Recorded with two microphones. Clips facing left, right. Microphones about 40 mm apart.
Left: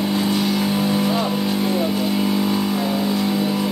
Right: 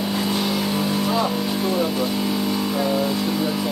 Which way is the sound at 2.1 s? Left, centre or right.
Centre.